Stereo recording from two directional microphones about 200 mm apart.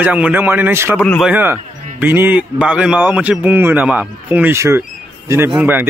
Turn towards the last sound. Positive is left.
turn(degrees=-10)  # may be behind; listen again after turning